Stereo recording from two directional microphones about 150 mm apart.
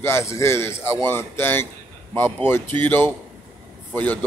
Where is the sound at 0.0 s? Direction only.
20° left (ahead or behind).